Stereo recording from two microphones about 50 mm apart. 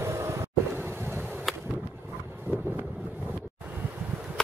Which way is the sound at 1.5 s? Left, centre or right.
Centre.